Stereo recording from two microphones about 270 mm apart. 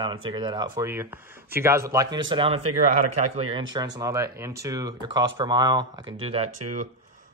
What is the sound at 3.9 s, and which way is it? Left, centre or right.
Speech, centre.